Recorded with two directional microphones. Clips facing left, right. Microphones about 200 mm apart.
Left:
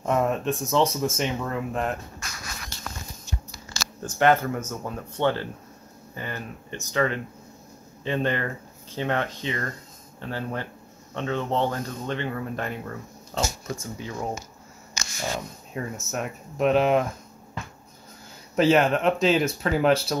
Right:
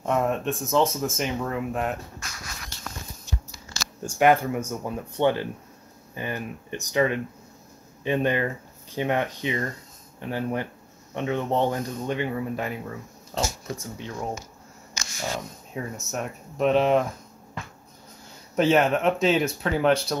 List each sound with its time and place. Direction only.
0.0 s speech: centre (ahead or behind)
4.0 s speech: 10° right (ahead or behind)
18.6 s speech: centre (ahead or behind)